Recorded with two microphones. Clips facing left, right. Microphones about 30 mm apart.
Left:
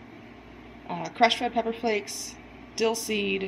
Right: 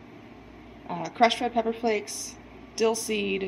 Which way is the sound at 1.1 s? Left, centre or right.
Centre.